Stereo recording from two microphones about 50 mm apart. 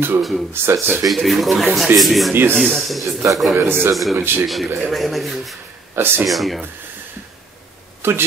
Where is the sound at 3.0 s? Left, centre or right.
Right.